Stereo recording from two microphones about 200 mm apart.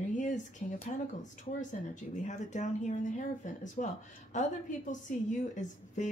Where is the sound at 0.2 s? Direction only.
40° left (ahead or behind).